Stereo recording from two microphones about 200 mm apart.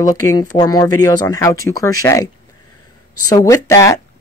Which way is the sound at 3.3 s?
20° left (ahead or behind).